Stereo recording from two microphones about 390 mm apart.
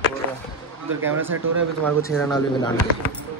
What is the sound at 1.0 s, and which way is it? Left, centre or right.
Speech, centre.